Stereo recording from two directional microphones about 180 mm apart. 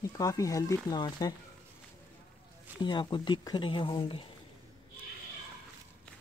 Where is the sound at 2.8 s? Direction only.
25° left (ahead or behind).